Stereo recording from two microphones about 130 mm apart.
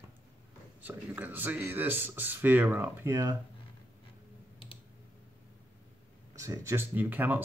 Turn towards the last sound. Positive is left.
turn(degrees=-15)  # may be behind; listen again after turning